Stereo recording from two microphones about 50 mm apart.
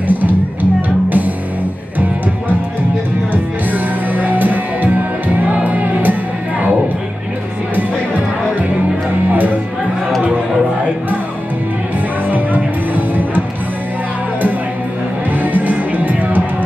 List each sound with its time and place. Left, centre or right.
0.1 s music: right
3.7 s music: right
7.7 s music: right
12.3 s music: right
15.3 s music: right